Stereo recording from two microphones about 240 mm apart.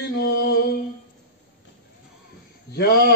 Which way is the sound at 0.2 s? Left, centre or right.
Left.